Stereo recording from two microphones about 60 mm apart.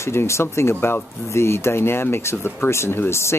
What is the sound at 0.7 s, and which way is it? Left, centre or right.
Speech, left.